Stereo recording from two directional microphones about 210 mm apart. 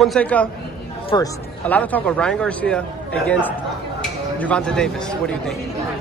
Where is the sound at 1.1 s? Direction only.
20° left (ahead or behind).